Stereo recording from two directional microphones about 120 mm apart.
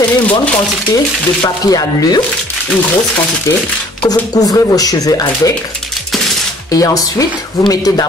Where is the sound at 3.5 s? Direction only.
25° left (ahead or behind).